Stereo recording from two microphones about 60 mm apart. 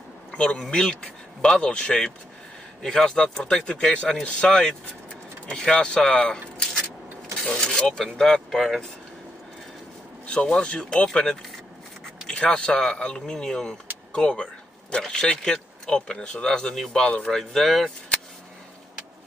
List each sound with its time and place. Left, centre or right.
0.3 s a sound: centre
0.6 s speech: centre
7.4 s speech: centre
10.2 s speech: centre
17.0 s speech: left
17.3 s speech: centre